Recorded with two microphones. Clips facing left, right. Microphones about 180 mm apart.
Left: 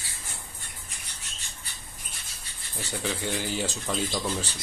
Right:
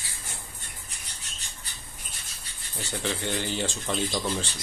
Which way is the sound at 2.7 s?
5° left (ahead or behind).